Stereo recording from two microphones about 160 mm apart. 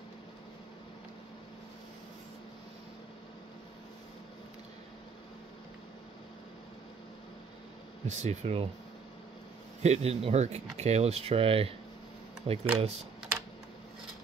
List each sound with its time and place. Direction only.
8.1 s speech: 45° right (ahead or behind)
9.8 s speech: 45° right (ahead or behind)